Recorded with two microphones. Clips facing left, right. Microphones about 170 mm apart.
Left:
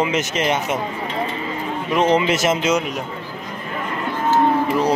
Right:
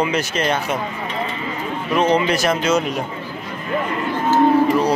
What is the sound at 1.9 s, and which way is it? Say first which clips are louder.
Speech: even; 20° left (ahead or behind).